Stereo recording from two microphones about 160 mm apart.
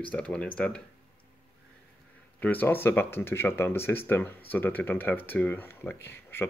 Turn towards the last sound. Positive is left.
turn(degrees=15)  # may be behind; listen again after turning